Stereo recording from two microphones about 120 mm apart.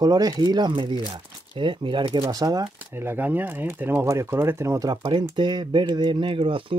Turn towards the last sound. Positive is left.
turn(degrees=-45)  # may be behind; listen again after turning